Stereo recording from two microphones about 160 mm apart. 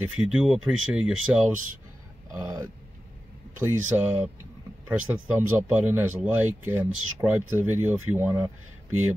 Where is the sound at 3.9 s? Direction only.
20° right (ahead or behind).